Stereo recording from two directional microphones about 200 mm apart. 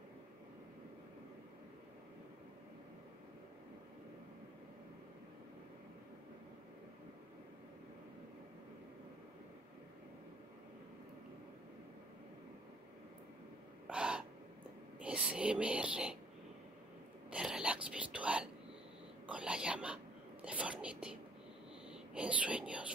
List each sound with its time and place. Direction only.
13.8 s gasp: 5° right (ahead or behind)
15.0 s a sound: 5° right (ahead or behind)
17.3 s whispering: 5° right (ahead or behind)